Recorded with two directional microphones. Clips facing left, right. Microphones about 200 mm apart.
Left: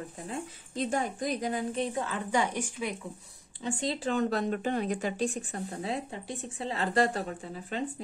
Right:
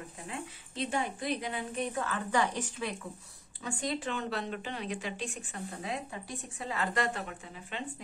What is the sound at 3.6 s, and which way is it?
Speech, 30° left (ahead or behind).